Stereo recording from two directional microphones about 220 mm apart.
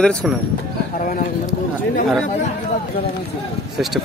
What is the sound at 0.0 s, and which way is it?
Speech, 5° left (ahead or behind).